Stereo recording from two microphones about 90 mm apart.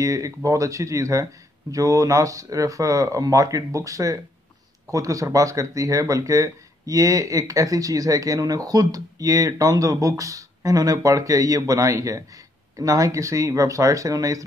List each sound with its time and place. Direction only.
0.0 s speech: 35° right (ahead or behind)